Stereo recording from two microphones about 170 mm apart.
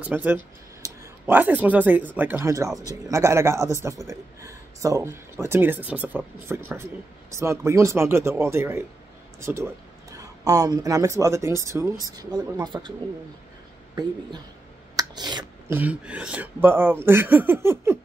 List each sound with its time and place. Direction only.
0.0 s a man's voice: 10° right (ahead or behind); by 12.9 s 30° right (ahead or behind)
15.0 s a sound: 25° right (ahead or behind)
15.7 s a man's voice: 10° right (ahead or behind)